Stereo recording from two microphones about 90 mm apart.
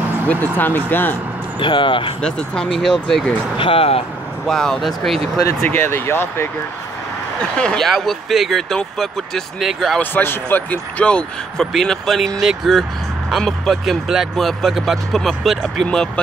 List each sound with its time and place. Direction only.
0.3 s speech: 20° left (ahead or behind)
1.6 s speech: 70° left (ahead or behind)
2.2 s speech: 10° left (ahead or behind)
3.5 s speech: 90° left
4.5 s speech: 5° left (ahead or behind)
5.6 s speech: 25° left (ahead or behind)
7.5 s speech: 5° left (ahead or behind)
9.9 s speech: 20° left (ahead or behind)